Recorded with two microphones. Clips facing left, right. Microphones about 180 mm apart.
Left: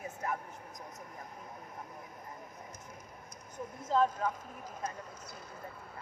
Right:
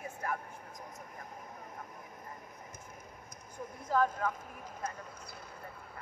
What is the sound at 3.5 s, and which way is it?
Speech, 20° left (ahead or behind).